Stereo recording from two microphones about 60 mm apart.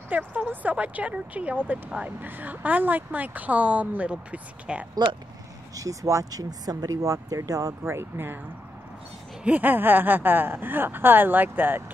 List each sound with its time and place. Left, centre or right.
0.1 s a woman's voice: right
5.8 s speech: right
7.8 s speech: right
9.4 s speech: right